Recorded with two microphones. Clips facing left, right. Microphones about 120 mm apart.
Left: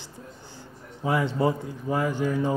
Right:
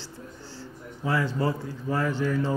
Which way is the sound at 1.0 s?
20° left (ahead or behind).